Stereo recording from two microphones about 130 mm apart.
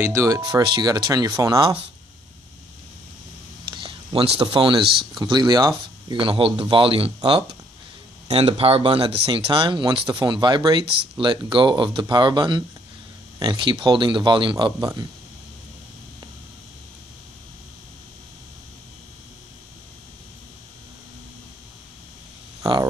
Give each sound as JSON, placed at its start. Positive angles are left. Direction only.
{"t": 0.0, "sound": "speech", "side_deg": -25}
{"t": 3.7, "sound": "speech", "side_deg": -45}
{"t": 22.6, "sound": "cricket", "side_deg": -30}